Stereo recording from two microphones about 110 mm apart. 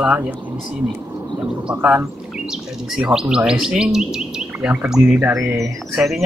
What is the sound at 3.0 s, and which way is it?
Chirp, 5° right (ahead or behind).